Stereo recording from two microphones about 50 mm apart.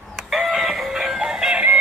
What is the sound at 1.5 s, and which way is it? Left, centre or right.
Synthetic singing, right.